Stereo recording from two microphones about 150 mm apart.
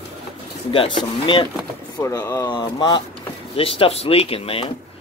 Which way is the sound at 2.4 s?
30° left (ahead or behind).